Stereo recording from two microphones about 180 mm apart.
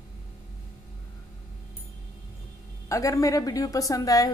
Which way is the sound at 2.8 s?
20° left (ahead or behind).